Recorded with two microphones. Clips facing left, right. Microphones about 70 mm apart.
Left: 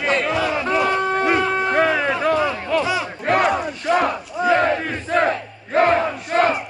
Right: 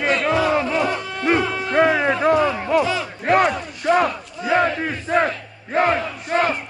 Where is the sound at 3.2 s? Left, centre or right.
Centre.